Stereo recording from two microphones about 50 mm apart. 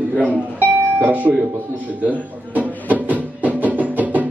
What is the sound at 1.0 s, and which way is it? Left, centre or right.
Speech, right.